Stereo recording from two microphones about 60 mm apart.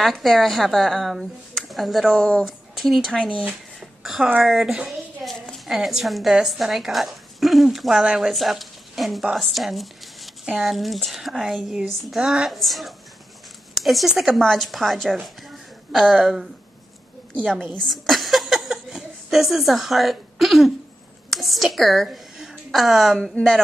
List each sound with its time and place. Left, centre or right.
0.0 s speech: centre
3.1 s speech: centre
4.0 s a woman's voice: centre
8.0 s a woman's voice: centre
8.3 s speech: centre
9.5 s a sound: centre
10.6 s speech: centre
14.4 s speech: centre
17.7 s a sound: centre
21.3 s speech: centre
21.7 s a sound: centre
22.7 s speech: centre